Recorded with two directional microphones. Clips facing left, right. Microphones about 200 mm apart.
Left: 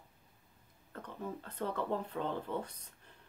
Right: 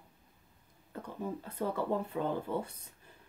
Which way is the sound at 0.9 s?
10° right (ahead or behind).